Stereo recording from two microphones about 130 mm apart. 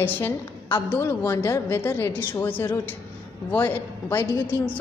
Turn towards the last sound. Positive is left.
turn(degrees=15)  # may be behind; listen again after turning